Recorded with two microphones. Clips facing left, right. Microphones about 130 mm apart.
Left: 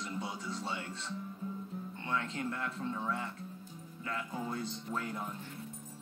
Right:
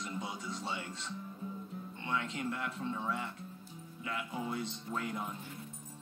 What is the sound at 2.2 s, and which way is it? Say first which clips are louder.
Speech: left 1 dB; 30° left (ahead or behind).